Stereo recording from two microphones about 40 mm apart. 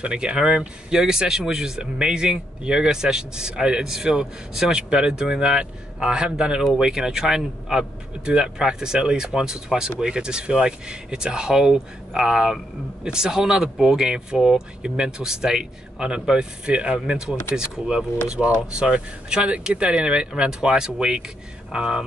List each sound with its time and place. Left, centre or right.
0.0 s speech: right
12.1 s speech: centre
13.0 s speech: centre